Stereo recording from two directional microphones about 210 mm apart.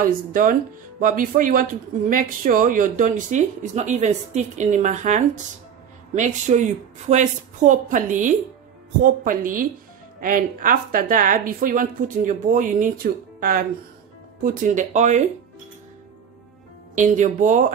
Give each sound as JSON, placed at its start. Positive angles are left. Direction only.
{"t": 0.0, "sound": "speech", "side_deg": -40}
{"t": 16.9, "sound": "speech", "side_deg": -35}